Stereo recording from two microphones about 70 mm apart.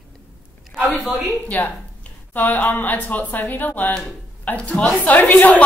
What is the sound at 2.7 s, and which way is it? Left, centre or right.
Speech, left.